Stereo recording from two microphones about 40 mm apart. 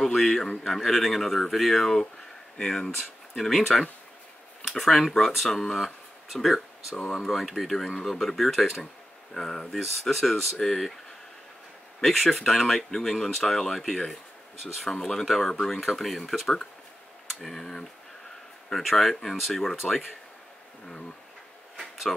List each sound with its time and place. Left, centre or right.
0.0 s a man's voice: centre
2.6 s speech: left
3.0 s speech: centre
12.0 s speech: centre